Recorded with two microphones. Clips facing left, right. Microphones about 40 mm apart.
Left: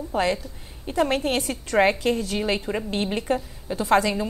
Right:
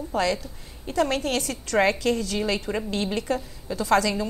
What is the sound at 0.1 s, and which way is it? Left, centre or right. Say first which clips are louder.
A woman's voice: left 1 dB; left.